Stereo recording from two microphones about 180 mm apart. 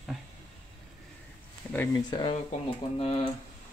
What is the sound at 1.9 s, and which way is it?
Speech, 25° left (ahead or behind).